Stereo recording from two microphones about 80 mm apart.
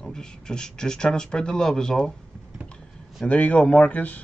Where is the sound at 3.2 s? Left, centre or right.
Centre.